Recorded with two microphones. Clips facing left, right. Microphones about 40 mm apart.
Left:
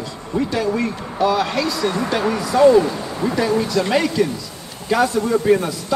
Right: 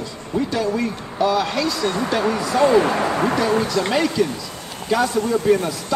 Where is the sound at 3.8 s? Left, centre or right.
Centre.